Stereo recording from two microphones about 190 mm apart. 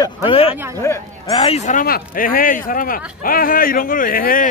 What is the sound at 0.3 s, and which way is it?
Speech, 30° left (ahead or behind).